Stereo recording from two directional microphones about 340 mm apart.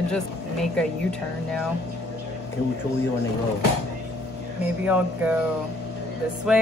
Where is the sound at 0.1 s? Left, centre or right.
Centre.